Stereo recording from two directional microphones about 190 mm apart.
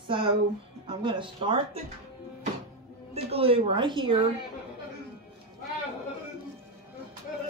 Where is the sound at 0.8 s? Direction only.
25° right (ahead or behind).